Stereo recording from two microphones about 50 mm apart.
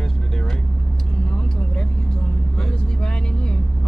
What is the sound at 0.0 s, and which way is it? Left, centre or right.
Vehicle, centre.